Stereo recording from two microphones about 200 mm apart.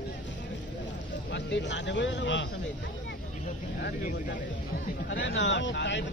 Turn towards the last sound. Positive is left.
turn(degrees=60)  # may be behind; listen again after turning